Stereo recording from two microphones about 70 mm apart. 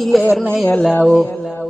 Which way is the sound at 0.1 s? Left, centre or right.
Centre.